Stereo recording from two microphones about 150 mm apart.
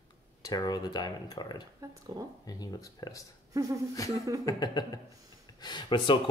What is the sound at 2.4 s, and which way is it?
Speech, 25° left (ahead or behind).